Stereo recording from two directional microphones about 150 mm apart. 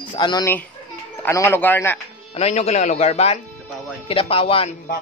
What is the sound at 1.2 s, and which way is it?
Speech, 15° left (ahead or behind).